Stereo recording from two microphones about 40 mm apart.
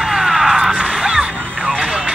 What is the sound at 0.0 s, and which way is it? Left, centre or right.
Music, centre.